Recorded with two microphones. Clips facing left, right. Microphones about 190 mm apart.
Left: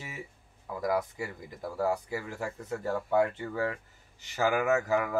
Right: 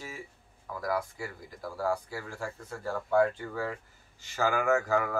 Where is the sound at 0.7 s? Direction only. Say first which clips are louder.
Left 3 dB; 20° left (ahead or behind).